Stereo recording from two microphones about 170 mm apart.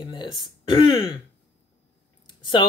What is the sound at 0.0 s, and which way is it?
Throat clearing, 25° left (ahead or behind).